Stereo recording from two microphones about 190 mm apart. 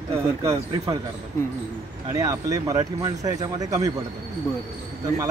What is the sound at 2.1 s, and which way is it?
Speech, 20° right (ahead or behind).